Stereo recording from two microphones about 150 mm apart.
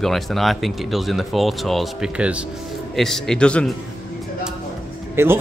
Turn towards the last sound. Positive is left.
turn(degrees=-15)  # may be behind; listen again after turning